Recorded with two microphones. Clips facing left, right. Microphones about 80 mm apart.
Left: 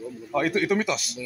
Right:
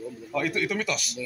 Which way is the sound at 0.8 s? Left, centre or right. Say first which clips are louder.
Left 3 dB; left.